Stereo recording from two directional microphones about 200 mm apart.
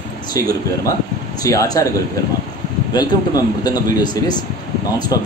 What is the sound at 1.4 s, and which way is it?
Speech, 15° left (ahead or behind).